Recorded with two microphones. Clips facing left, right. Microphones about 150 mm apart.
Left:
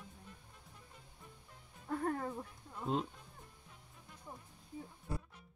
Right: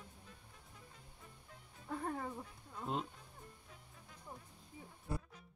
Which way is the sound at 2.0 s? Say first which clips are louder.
Left 4 dB; 5° right (ahead or behind).